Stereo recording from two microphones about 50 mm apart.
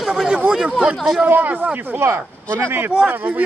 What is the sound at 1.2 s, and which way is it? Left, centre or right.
Speech, right.